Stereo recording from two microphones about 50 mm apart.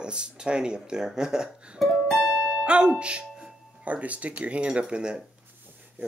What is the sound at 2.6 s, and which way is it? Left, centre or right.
Speech, right.